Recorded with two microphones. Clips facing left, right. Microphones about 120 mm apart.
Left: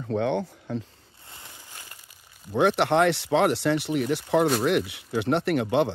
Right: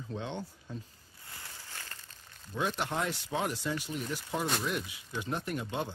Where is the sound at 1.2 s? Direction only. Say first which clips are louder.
Left 1 dB; 20° left (ahead or behind).